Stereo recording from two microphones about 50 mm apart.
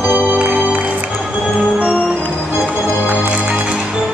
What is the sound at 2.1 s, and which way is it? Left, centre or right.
Music, left.